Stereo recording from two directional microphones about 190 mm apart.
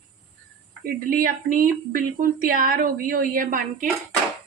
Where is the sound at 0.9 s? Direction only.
45° right (ahead or behind).